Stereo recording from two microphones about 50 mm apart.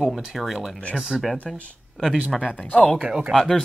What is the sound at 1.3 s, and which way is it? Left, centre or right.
Speech, left.